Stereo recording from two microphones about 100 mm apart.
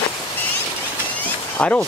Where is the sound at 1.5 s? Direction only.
15° left (ahead or behind).